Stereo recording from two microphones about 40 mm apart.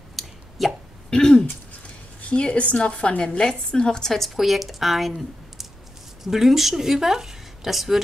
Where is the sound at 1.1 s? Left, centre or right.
Centre.